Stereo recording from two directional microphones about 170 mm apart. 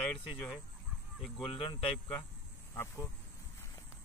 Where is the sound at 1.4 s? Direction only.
30° left (ahead or behind).